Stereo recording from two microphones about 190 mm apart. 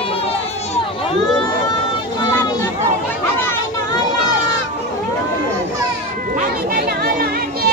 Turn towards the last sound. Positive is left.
turn(degrees=-50)  # may be behind; listen again after turning